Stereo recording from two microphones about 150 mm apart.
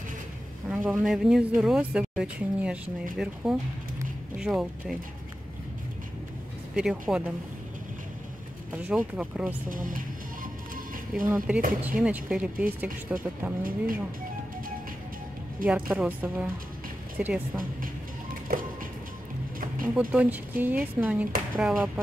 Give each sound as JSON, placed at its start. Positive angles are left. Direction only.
{"t": 0.7, "sound": "speech", "side_deg": -10}
{"t": 4.4, "sound": "speech", "side_deg": -5}
{"t": 6.7, "sound": "speech", "side_deg": -5}
{"t": 8.7, "sound": "speech", "side_deg": -10}
{"t": 9.7, "sound": "speech", "side_deg": -65}
{"t": 11.2, "sound": "speech", "side_deg": -5}
{"t": 13.6, "sound": "speech", "side_deg": -70}
{"t": 15.6, "sound": "speech", "side_deg": -10}
{"t": 18.5, "sound": "music", "side_deg": -70}
{"t": 19.9, "sound": "speech", "side_deg": -10}